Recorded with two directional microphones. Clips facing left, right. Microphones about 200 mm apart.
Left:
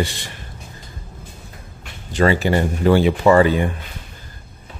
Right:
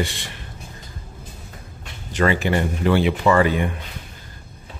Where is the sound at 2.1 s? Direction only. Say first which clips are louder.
Left 3 dB; 30° left (ahead or behind).